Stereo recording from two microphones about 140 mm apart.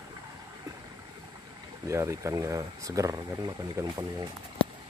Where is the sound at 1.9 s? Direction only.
20° right (ahead or behind).